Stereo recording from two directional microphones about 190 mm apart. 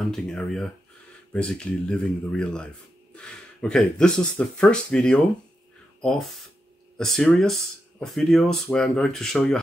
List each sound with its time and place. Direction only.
0.0 s speech: centre (ahead or behind)